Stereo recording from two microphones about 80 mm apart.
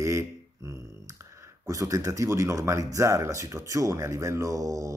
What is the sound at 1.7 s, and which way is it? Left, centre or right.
Speech, right.